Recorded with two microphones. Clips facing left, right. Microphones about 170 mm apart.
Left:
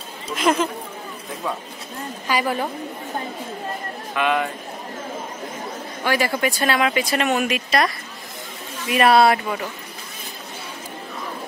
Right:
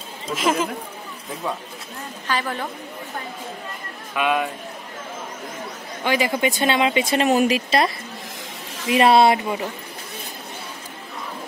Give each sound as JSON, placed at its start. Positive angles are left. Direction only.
{"t": 0.3, "sound": "speech", "side_deg": 0}
{"t": 2.2, "sound": "a woman's voice", "side_deg": 10}
{"t": 4.2, "sound": "speech", "side_deg": -15}
{"t": 6.0, "sound": "speech", "side_deg": -15}